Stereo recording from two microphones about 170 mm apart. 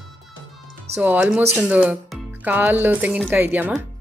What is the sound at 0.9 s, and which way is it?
Speech, 10° right (ahead or behind).